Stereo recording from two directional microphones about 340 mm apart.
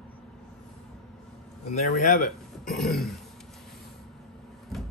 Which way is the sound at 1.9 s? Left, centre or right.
Left.